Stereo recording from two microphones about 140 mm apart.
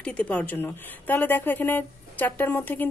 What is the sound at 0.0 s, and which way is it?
Speech, 10° left (ahead or behind).